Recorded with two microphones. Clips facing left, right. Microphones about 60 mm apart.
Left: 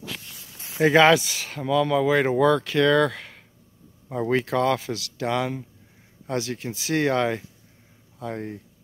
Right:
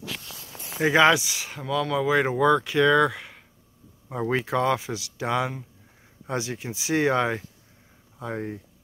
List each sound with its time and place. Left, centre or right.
0.8 s speech: centre